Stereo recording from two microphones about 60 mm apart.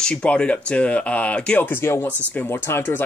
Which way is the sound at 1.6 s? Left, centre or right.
Left.